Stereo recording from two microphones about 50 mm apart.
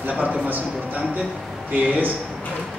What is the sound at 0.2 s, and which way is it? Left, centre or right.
Speech, right.